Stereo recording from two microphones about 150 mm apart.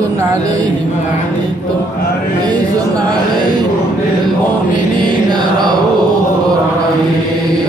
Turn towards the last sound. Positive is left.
turn(degrees=-30)  # may be behind; listen again after turning